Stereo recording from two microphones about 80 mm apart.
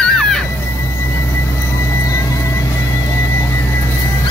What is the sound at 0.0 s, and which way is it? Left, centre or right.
Music, centre.